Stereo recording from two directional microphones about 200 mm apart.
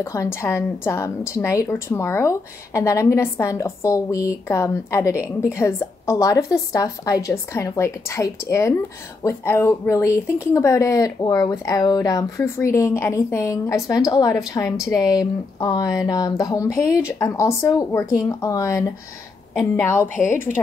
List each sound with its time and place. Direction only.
0.0 s a woman's voice: 15° left (ahead or behind)
5.1 s a woman's voice: 10° right (ahead or behind)
5.5 s a woman's voice: 15° left (ahead or behind)